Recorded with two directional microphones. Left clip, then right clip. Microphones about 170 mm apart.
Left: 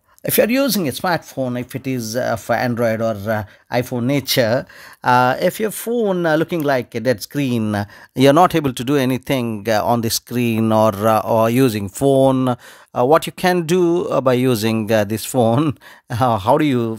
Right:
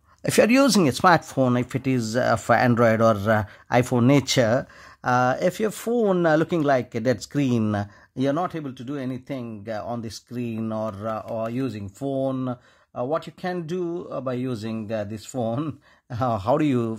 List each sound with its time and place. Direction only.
0.2 s speech: centre (ahead or behind)
8.1 s speech: 30° left (ahead or behind); by 16.9 s 15° left (ahead or behind)